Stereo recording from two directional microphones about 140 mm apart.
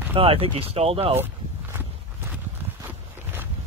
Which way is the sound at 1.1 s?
15° right (ahead or behind).